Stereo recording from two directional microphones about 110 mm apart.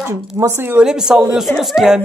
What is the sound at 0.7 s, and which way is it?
Speech, 5° right (ahead or behind).